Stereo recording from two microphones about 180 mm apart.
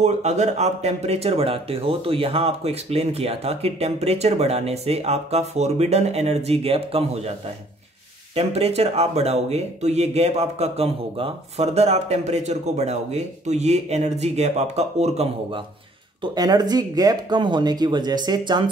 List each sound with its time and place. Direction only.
0.0 s speech: 40° right (ahead or behind)
8.4 s speech: 35° right (ahead or behind)
16.2 s speech: 20° right (ahead or behind)